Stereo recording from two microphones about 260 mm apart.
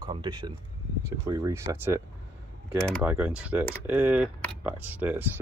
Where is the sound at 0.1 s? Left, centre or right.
Centre.